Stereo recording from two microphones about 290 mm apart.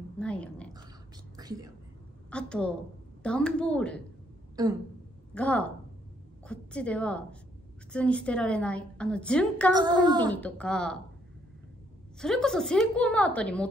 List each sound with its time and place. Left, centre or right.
0.2 s a sound: centre
1.3 s whispering: centre
2.3 s a woman's voice: centre
4.6 s speech: centre
5.3 s a woman's voice: centre
9.8 s speech: centre
10.3 s a woman's voice: centre
12.2 s a woman's voice: centre